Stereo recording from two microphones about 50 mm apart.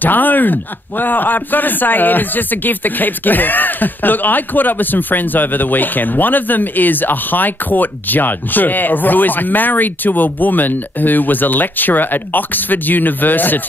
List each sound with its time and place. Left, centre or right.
0.0 s speech: left